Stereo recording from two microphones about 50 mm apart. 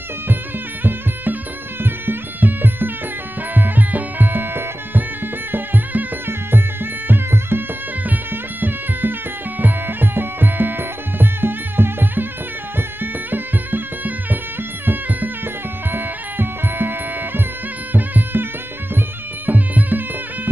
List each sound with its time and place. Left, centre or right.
0.8 s music: right
8.0 s music: right